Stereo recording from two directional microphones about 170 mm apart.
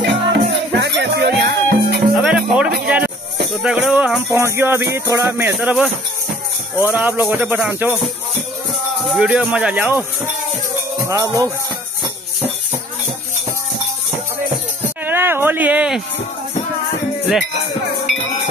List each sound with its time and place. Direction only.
0.0 s music: 80° right
2.2 s music: 5° right (ahead or behind)
9.1 s music: 5° right (ahead or behind)
11.1 s music: 20° right (ahead or behind)
14.8 s music: 10° right (ahead or behind)